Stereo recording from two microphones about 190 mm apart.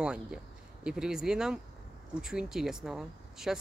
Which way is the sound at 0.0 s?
5° right (ahead or behind).